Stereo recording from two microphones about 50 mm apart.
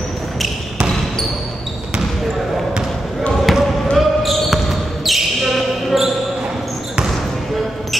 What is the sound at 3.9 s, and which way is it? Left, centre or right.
Basketball bounce, centre.